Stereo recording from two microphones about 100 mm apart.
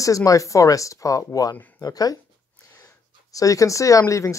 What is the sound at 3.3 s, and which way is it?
Speech, 35° left (ahead or behind).